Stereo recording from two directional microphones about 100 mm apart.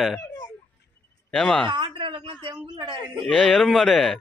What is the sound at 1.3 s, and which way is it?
Speech, 5° left (ahead or behind).